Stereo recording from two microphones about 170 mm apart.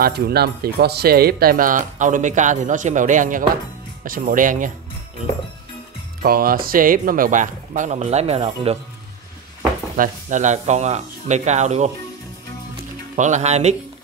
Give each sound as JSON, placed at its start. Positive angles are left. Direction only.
{"t": 0.0, "sound": "speech", "side_deg": -70}
{"t": 6.2, "sound": "speech", "side_deg": -60}
{"t": 9.9, "sound": "speech", "side_deg": -45}
{"t": 13.1, "sound": "speech", "side_deg": -45}